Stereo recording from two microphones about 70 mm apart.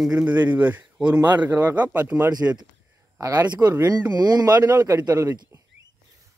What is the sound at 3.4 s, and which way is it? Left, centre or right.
Speech, right.